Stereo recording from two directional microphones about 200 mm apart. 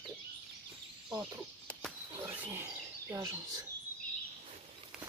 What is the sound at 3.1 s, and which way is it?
Speech, 15° right (ahead or behind).